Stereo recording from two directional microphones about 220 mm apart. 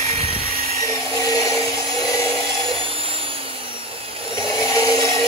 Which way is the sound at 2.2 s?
25° right (ahead or behind).